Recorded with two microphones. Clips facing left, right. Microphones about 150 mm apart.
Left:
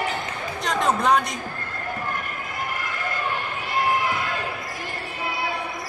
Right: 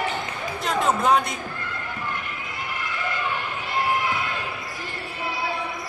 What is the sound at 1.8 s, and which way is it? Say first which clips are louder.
Run: left 5 dB; 45° left (ahead or behind).